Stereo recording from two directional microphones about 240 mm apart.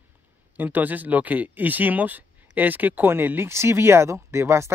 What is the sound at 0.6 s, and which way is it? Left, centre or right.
Speech, centre.